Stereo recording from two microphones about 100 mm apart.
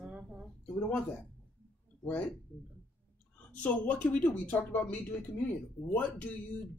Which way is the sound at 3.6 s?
15° left (ahead or behind).